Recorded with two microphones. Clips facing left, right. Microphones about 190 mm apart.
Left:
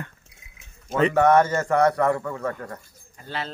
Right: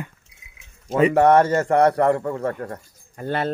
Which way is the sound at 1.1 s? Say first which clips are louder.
Right 2 dB; 30° right (ahead or behind).